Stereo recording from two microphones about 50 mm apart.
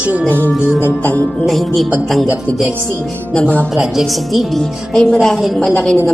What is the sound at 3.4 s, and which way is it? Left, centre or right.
Music, left.